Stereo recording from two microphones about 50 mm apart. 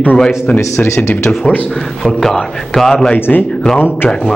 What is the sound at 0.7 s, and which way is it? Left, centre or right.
Speech, left.